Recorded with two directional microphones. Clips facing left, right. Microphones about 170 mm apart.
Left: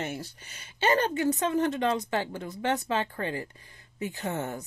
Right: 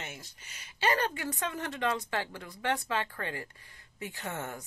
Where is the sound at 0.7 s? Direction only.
25° left (ahead or behind).